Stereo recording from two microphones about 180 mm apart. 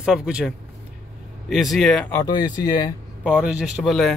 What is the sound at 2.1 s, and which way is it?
Speech, 20° left (ahead or behind).